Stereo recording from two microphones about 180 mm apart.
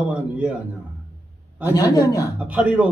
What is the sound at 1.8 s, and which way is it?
Speech, 20° left (ahead or behind).